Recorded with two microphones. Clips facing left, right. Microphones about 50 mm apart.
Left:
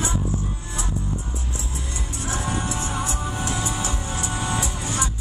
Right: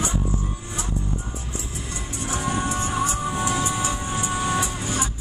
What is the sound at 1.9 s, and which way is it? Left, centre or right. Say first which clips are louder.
Music: right 1 dB; right.